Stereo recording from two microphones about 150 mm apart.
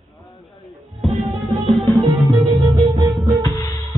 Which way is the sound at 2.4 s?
25° right (ahead or behind).